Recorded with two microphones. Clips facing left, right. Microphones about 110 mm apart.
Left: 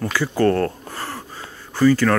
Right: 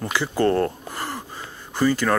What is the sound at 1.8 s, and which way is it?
Speech, 15° right (ahead or behind).